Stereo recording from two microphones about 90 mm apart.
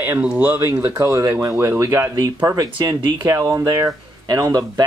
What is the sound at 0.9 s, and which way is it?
Speech, 35° right (ahead or behind).